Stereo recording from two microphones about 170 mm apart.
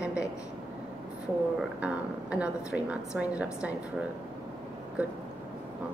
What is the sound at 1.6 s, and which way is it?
A woman's voice, 5° right (ahead or behind).